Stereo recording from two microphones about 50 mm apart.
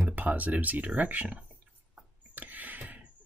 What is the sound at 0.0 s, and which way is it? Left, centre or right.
Speech, right.